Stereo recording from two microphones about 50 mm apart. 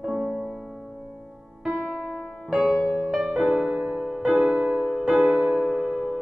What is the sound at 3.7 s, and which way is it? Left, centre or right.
Music, right.